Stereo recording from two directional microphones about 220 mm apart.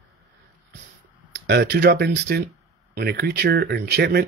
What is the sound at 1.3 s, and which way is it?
Speech, 50° right (ahead or behind).